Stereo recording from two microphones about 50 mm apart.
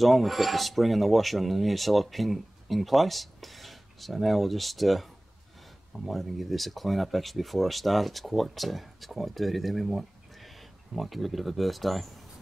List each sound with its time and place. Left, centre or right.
0.0 s speech: centre